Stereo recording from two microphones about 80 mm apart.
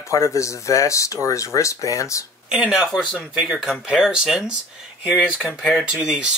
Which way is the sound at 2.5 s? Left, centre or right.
Centre.